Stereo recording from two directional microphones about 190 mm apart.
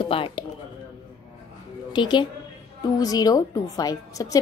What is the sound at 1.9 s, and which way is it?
A woman's voice, 25° left (ahead or behind).